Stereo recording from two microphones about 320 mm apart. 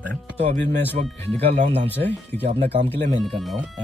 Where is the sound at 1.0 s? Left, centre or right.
Right.